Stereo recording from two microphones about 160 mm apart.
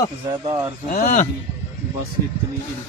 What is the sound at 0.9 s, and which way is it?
Speech, 60° left (ahead or behind).